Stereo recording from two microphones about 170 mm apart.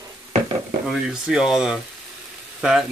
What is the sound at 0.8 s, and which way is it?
Speech, 5° right (ahead or behind).